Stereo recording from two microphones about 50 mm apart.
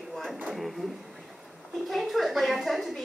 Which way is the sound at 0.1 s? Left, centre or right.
Centre.